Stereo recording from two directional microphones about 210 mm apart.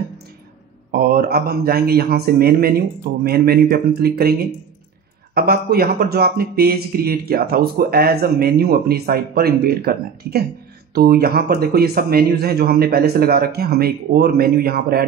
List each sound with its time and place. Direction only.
0.9 s speech: 45° right (ahead or behind)